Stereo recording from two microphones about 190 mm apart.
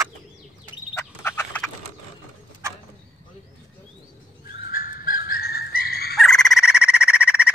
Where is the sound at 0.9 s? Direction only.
15° left (ahead or behind).